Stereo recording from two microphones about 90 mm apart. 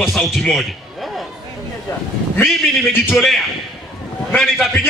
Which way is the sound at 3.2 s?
5° left (ahead or behind).